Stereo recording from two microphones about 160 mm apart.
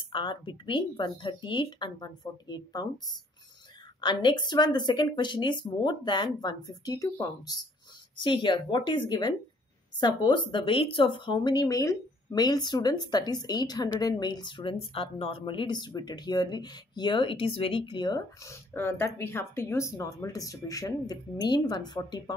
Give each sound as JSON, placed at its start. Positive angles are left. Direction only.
{"t": 0.1, "sound": "speech", "side_deg": 30}
{"t": 4.0, "sound": "speech", "side_deg": 30}